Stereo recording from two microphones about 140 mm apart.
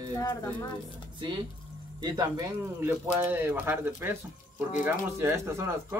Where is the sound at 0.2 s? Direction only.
20° left (ahead or behind).